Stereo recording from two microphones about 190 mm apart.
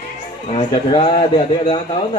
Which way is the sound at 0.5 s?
30° left (ahead or behind).